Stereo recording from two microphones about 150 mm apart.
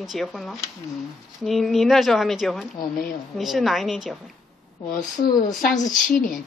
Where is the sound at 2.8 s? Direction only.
70° left (ahead or behind).